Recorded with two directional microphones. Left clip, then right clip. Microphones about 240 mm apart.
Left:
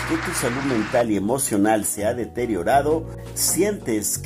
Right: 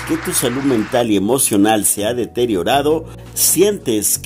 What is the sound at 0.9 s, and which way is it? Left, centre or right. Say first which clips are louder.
Speech: right 4 dB; right.